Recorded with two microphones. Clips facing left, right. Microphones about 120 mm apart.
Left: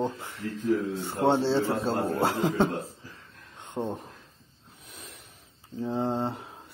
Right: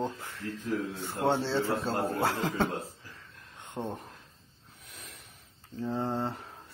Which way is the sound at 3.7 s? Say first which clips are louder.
Left 4 dB; 20° left (ahead or behind).